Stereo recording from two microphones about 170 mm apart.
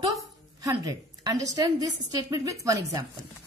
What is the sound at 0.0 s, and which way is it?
A woman's voice, 20° right (ahead or behind).